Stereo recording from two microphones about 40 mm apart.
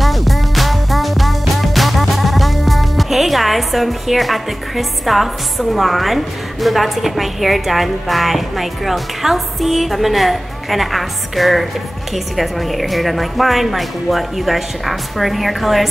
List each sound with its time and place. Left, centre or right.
0.0 s music: centre
12.1 s a woman's voice: centre